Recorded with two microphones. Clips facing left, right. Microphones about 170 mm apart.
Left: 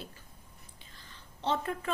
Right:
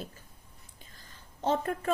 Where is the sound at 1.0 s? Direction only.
45° right (ahead or behind).